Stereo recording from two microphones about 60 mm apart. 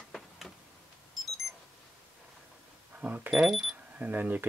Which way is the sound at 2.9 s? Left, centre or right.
Right.